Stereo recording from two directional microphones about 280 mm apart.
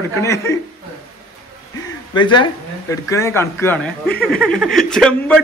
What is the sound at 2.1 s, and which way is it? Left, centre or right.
A man's voice, centre.